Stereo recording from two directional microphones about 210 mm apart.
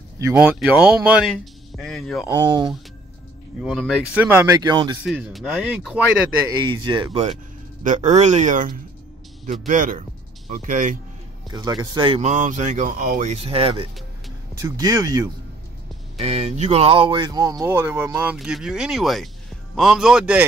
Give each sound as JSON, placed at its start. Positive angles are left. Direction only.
{"t": 0.2, "sound": "speech", "side_deg": -5}
{"t": 2.2, "sound": "speech", "side_deg": -15}
{"t": 3.6, "sound": "speech", "side_deg": 0}
{"t": 5.0, "sound": "speech", "side_deg": 0}
{"t": 6.6, "sound": "speech", "side_deg": -20}
{"t": 7.8, "sound": "speech", "side_deg": -35}
{"t": 11.5, "sound": "speech", "side_deg": -20}
{"t": 16.2, "sound": "speech", "side_deg": -30}